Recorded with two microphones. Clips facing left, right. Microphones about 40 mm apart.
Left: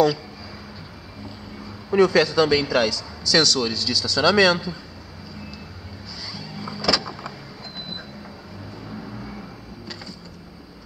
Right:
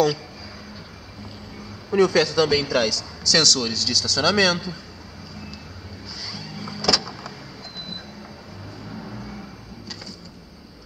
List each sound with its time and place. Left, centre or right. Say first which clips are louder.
1.9 s a man's voice: left 1 dB; centre
6.3 s music: left 2 dB; centre